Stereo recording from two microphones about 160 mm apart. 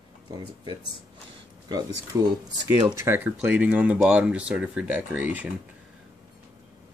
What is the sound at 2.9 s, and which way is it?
Speech, 15° right (ahead or behind).